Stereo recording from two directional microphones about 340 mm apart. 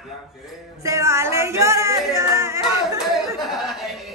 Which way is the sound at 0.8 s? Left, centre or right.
Centre.